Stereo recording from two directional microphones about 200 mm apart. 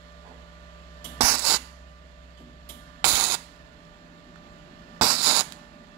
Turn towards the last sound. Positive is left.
turn(degrees=-20)  # may be behind; listen again after turning